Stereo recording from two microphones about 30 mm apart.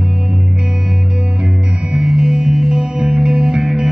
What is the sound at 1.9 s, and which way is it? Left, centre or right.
Music, right.